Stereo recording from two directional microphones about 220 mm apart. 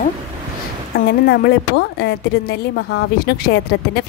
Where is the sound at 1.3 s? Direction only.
50° left (ahead or behind).